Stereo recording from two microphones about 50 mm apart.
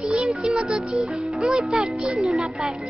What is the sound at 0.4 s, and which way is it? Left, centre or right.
Music, centre.